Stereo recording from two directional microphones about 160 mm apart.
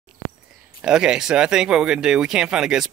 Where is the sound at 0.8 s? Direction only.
5° right (ahead or behind).